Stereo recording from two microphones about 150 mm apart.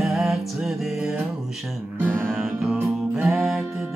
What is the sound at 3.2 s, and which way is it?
Music, 5° right (ahead or behind).